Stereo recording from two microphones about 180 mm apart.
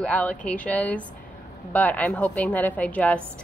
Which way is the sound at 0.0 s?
5° left (ahead or behind).